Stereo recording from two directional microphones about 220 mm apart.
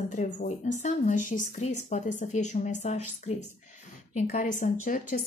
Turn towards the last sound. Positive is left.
turn(degrees=35)  # may be behind; listen again after turning